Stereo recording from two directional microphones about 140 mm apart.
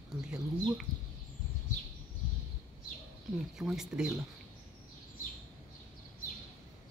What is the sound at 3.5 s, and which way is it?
Speech, 5° right (ahead or behind).